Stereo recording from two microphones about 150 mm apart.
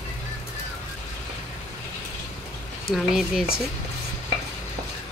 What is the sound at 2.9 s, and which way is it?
Speech, 5° right (ahead or behind).